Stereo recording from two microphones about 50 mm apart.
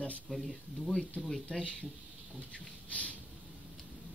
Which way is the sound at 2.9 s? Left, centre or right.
Left.